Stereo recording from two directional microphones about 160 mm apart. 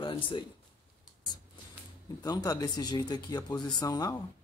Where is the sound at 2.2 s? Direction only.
25° left (ahead or behind).